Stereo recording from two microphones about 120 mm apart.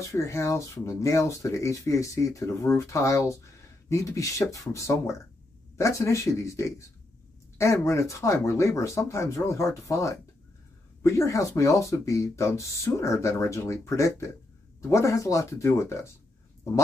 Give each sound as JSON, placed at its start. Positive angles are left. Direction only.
{"t": 0.0, "sound": "speech", "side_deg": 25}